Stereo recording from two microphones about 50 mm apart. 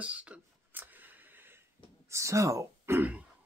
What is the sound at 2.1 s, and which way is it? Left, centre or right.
Speech, right.